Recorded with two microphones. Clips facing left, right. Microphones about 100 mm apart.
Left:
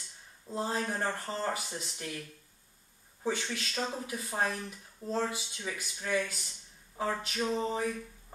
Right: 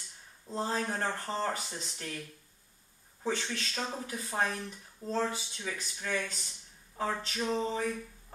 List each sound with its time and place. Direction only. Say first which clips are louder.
0.5 s speech: even; 5° left (ahead or behind)
3.3 s speech: even; 5° left (ahead or behind)